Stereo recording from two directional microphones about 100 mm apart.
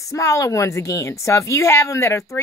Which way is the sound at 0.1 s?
30° left (ahead or behind).